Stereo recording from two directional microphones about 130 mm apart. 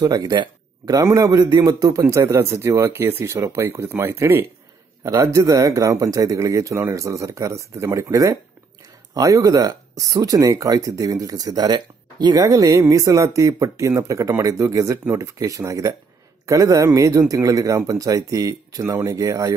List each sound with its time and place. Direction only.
0.0 s speech: 30° right (ahead or behind)